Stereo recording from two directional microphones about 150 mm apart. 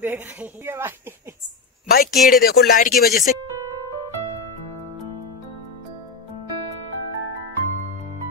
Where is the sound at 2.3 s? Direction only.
90° left.